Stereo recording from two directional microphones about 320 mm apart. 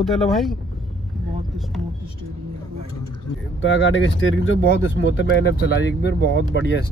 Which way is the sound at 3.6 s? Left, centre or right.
Left.